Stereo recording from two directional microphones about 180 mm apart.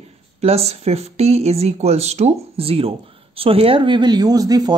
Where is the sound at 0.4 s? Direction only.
35° right (ahead or behind).